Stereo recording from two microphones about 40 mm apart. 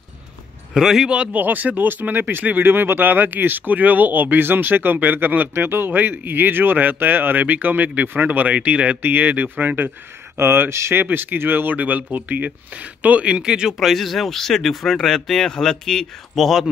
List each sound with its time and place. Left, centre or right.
0.7 s speech: centre
1.0 s speech: right
1.3 s speech: right
5.5 s speech: right
9.0 s speech: right
10.3 s speech: right
11.1 s speech: right
13.3 s speech: centre
13.7 s speech: centre
16.3 s speech: centre